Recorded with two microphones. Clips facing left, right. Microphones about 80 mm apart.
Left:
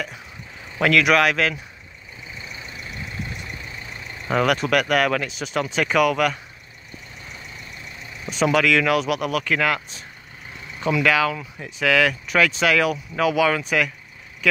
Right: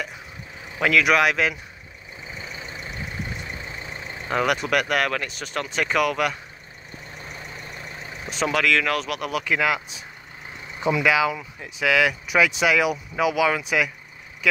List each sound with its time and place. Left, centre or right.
0.7 s speech: centre
2.3 s vehicle: right
4.3 s speech: centre
7.6 s vehicle: right
8.3 s speech: centre